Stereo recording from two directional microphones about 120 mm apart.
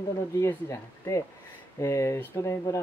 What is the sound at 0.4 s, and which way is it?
Speech, 20° left (ahead or behind).